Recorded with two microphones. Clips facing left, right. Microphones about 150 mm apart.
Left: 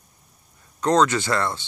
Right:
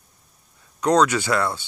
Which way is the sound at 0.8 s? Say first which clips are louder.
Right 1 dB; 10° right (ahead or behind).